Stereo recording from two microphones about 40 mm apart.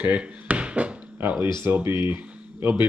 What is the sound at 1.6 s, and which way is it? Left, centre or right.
Speech, right.